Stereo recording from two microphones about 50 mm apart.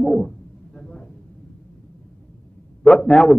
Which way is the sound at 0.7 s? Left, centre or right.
Centre.